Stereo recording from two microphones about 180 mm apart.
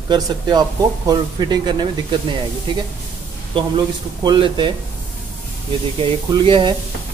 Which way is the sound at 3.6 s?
25° right (ahead or behind).